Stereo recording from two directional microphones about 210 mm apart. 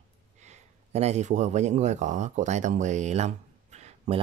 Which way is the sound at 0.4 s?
30° right (ahead or behind).